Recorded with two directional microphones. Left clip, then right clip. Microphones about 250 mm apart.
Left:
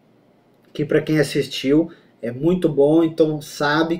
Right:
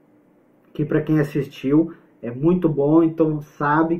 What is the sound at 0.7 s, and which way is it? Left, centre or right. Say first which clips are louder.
Speech: left 2 dB; centre.